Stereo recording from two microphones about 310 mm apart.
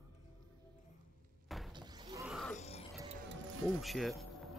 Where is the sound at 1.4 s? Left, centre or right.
Centre.